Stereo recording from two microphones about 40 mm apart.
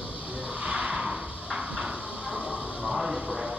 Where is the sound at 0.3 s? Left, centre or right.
Right.